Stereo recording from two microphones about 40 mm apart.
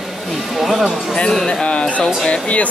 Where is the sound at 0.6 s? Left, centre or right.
Centre.